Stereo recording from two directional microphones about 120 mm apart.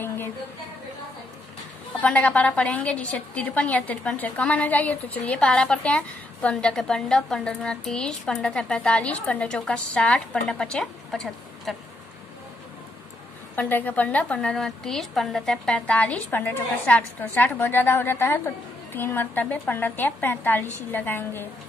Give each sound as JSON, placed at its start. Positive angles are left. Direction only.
{"t": 2.0, "sound": "a woman's voice", "side_deg": 10}
{"t": 13.6, "sound": "a woman's voice", "side_deg": 15}